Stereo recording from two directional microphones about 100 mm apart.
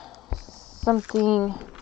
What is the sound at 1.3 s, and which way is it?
Speech, 10° left (ahead or behind).